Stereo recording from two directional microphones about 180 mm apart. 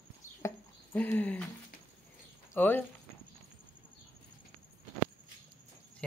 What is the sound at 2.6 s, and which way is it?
Speech, 10° left (ahead or behind).